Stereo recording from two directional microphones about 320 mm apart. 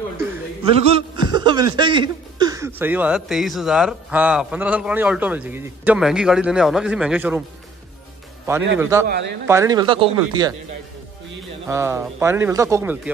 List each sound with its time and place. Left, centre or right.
0.7 s a man's voice: centre
8.7 s speech: centre
9.0 s speech: right
9.5 s speech: centre
11.6 s speech: centre